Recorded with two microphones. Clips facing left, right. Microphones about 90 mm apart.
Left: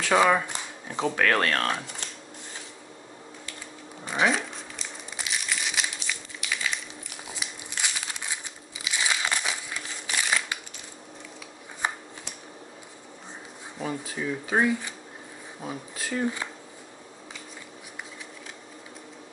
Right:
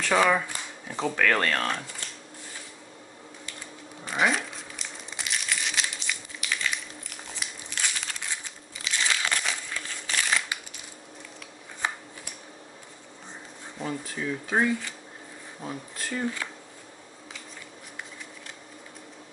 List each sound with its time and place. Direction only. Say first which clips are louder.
0.0 s speech: left 1 dB; 5° left (ahead or behind)
0.5 s a sound: left 1 dB; 15° left (ahead or behind)
1.2 s speech: left 1 dB; 5° left (ahead or behind)
4.0 s crumpling: left 1 dB; centre (ahead or behind)
13.8 s speech: left 1 dB; 10° left (ahead or behind)